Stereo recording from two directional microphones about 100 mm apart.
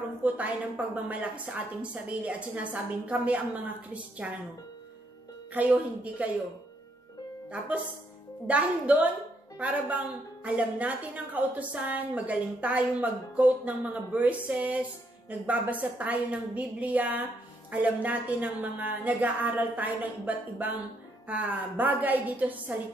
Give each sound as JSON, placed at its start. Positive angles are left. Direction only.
{"t": 0.2, "sound": "a woman's voice", "side_deg": -15}
{"t": 5.5, "sound": "a woman's voice", "side_deg": -15}
{"t": 7.4, "sound": "a woman's voice", "side_deg": -10}